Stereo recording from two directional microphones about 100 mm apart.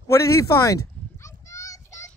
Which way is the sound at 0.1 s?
30° left (ahead or behind).